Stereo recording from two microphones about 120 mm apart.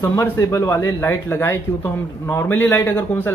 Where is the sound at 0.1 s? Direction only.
25° left (ahead or behind).